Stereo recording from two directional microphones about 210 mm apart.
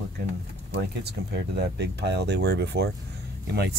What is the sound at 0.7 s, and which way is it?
Speech, 55° right (ahead or behind).